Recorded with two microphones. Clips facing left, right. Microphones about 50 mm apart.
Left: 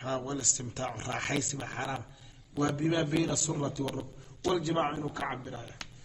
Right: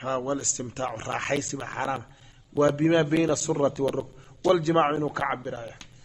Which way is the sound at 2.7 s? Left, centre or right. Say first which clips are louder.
Right 7 dB; right.